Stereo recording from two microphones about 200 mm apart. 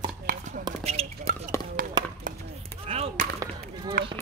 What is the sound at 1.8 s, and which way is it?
Music, 45° right (ahead or behind).